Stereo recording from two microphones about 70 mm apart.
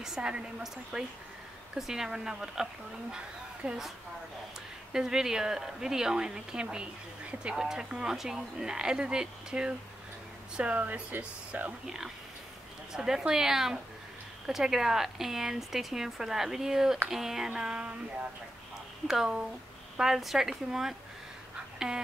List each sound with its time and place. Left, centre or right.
0.0 s a woman's voice: centre
4.9 s a woman's voice: centre; by 11.7 s right
11.8 s a woman's voice: centre
19.0 s a woman's voice: centre